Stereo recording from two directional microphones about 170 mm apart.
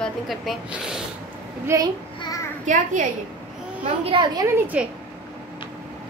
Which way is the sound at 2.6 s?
50° right (ahead or behind).